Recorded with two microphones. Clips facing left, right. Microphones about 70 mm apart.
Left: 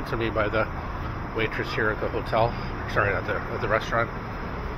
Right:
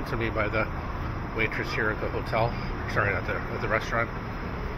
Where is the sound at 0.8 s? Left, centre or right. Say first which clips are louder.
Left 1 dB; left.